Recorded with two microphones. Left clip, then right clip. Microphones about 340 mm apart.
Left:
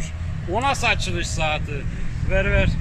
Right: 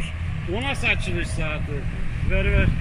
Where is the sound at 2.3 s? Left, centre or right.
Left.